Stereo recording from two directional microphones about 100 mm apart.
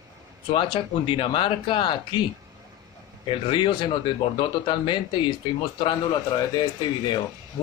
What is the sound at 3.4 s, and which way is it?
Speech, 55° left (ahead or behind).